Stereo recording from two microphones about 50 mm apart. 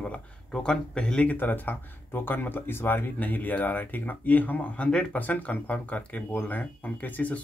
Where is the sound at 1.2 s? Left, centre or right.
Left.